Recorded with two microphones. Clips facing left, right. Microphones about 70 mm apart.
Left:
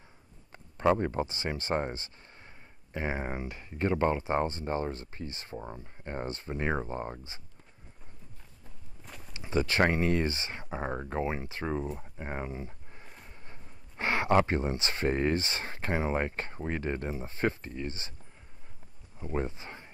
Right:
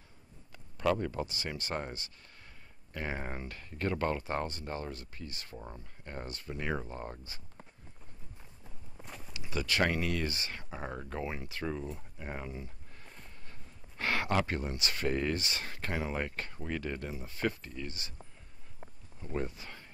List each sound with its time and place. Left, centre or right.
0.5 s speech: left
9.0 s walk: centre
9.3 s speech: left
19.1 s a sound: left